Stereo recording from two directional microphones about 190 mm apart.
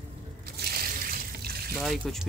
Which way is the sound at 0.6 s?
55° right (ahead or behind).